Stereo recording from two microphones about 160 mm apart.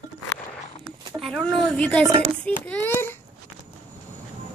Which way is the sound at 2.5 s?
10° left (ahead or behind).